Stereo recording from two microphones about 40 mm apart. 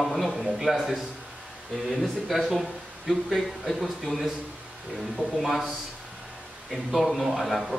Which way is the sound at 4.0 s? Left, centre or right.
Centre.